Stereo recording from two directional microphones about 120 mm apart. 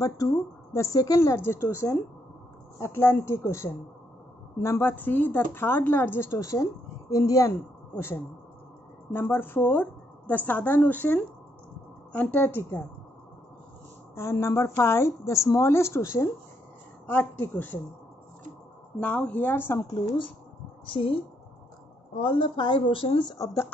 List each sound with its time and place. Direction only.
0.0 s a woman's voice: 30° left (ahead or behind)
14.1 s a woman's voice: 25° left (ahead or behind)
18.9 s a woman's voice: 10° left (ahead or behind)
20.8 s speech: 45° left (ahead or behind)
22.2 s speech: 45° left (ahead or behind)
23.3 s speech: 25° left (ahead or behind)